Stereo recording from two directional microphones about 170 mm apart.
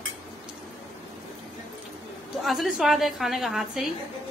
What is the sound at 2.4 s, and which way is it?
A woman's voice, centre (ahead or behind).